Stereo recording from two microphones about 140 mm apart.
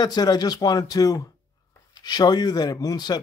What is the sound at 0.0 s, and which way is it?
Speech, 30° left (ahead or behind).